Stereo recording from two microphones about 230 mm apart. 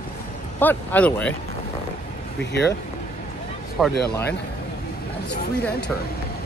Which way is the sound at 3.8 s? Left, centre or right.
Centre.